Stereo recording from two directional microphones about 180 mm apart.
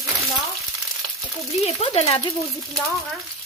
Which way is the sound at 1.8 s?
35° left (ahead or behind).